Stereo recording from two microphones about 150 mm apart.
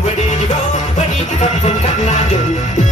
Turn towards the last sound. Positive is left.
turn(degrees=50)  # may be behind; listen again after turning